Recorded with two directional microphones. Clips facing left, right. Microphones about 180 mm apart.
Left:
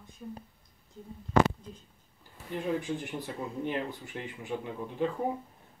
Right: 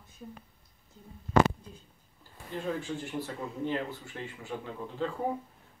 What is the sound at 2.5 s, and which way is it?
Speech, 15° left (ahead or behind).